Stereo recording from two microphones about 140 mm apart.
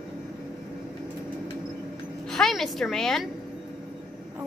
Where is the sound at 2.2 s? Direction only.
Centre (ahead or behind).